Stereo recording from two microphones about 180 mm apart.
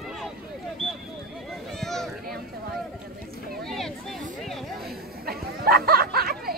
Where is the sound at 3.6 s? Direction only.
Centre (ahead or behind).